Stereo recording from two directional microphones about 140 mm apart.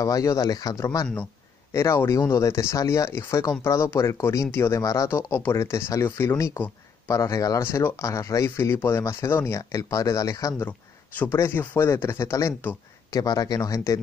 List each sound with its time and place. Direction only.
0.0 s speech: 25° left (ahead or behind)